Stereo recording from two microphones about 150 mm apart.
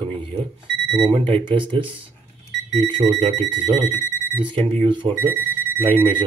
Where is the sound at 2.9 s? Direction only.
35° right (ahead or behind).